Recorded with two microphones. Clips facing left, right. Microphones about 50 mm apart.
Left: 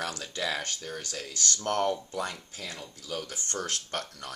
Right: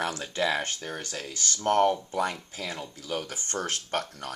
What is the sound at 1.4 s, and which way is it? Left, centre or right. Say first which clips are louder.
Speech: right 5 dB; right.